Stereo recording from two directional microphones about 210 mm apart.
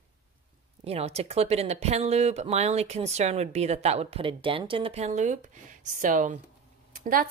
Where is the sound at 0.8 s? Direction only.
30° right (ahead or behind).